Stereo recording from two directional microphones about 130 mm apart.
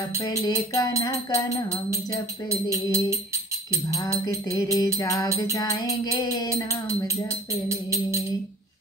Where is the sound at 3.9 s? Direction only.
25° left (ahead or behind).